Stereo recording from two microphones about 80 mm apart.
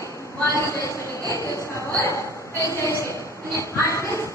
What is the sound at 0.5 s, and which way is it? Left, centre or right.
Speech, left.